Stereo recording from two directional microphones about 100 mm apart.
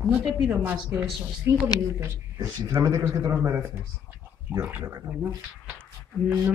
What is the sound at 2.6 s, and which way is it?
A man's voice, 35° right (ahead or behind).